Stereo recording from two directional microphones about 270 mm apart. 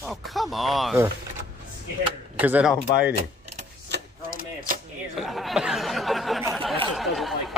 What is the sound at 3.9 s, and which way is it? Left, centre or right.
Typewriter, right.